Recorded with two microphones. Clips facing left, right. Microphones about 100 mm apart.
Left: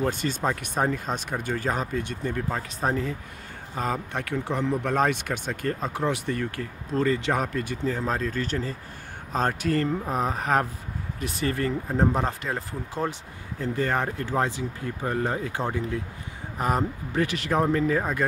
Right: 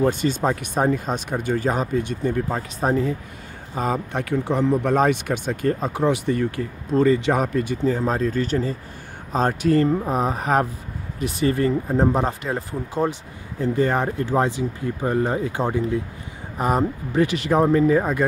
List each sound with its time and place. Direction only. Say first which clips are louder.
0.0 s speech: right 6 dB; 20° right (ahead or behind)
9.8 s speech: right 6 dB; 25° right (ahead or behind)
10.1 s speech: right 4 dB; 15° right (ahead or behind)